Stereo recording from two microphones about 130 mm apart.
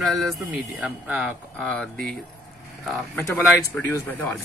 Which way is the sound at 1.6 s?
5° left (ahead or behind).